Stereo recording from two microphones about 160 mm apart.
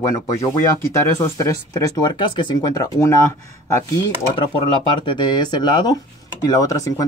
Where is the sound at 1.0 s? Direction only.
20° left (ahead or behind).